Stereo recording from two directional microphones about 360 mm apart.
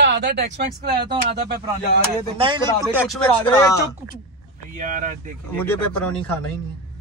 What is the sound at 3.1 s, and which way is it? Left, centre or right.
Speech, centre.